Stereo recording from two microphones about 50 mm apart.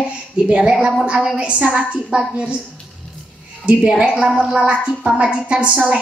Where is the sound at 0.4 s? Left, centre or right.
Right.